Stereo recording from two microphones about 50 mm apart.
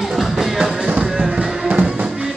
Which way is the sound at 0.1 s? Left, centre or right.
Centre.